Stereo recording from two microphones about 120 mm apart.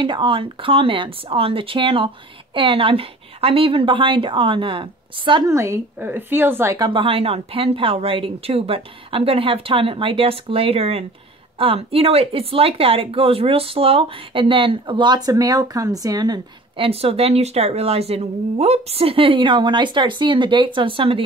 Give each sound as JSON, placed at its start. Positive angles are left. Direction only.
{"t": 0.0, "sound": "speech", "side_deg": -40}
{"t": 5.5, "sound": "a woman's voice", "side_deg": -25}
{"t": 6.8, "sound": "speech", "side_deg": -45}
{"t": 16.7, "sound": "speech", "side_deg": -50}